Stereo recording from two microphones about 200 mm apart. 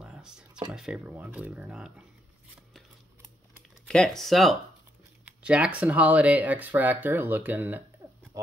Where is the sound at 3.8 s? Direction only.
5° left (ahead or behind).